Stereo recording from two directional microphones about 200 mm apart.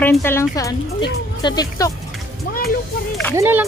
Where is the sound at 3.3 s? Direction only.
10° right (ahead or behind).